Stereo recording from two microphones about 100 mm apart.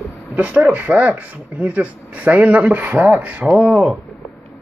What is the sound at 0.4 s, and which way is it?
Speech, 15° right (ahead or behind).